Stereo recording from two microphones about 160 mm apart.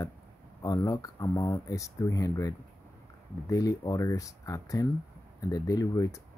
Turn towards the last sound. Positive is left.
turn(degrees=20)  # may be behind; listen again after turning